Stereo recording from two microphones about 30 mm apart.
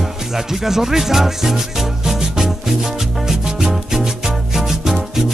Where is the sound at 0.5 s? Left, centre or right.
Centre.